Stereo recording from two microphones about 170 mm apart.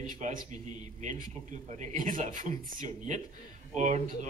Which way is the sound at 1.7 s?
45° right (ahead or behind).